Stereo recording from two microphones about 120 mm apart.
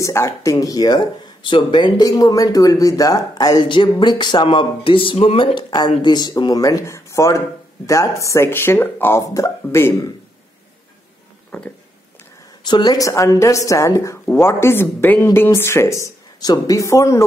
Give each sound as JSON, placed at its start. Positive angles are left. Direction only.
{"t": 0.0, "sound": "speech", "side_deg": 25}
{"t": 9.2, "sound": "speech", "side_deg": 25}
{"t": 11.5, "sound": "speech", "side_deg": 10}
{"t": 12.6, "sound": "speech", "side_deg": 35}